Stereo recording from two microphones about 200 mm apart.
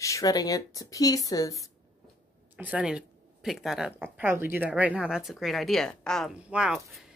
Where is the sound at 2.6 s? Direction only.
5° right (ahead or behind).